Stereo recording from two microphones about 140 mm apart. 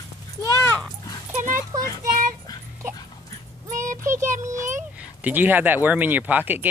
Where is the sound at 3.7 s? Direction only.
65° right (ahead or behind).